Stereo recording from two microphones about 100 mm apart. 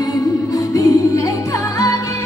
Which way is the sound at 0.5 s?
35° left (ahead or behind).